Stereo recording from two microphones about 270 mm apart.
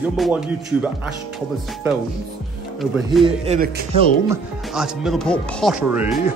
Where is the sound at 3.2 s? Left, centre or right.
Right.